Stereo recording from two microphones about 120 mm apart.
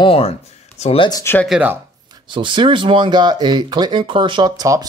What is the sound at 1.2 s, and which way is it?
Speech, 15° left (ahead or behind).